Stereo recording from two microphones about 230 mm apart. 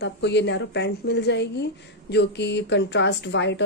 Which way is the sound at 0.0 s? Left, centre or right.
Left.